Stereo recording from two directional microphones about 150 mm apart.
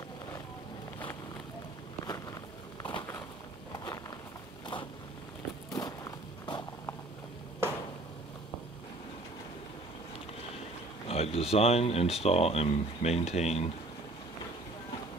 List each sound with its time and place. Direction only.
2.0 s a sound: 25° left (ahead or behind)
5.8 s walk: 25° left (ahead or behind)
11.1 s speech: 45° left (ahead or behind)